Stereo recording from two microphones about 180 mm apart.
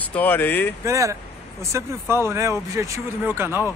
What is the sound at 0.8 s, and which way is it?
Speech, 15° right (ahead or behind).